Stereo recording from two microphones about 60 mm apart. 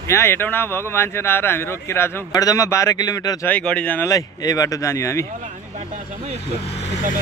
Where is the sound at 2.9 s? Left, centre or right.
Left.